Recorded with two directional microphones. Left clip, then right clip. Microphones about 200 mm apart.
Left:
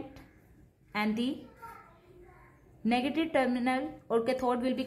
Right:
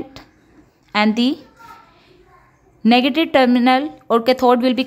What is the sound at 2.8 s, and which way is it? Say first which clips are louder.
A woman's voice: right 15 dB; 45° right (ahead or behind).